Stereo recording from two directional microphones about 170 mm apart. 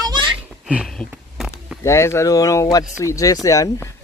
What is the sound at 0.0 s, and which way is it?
Giggle, 25° right (ahead or behind).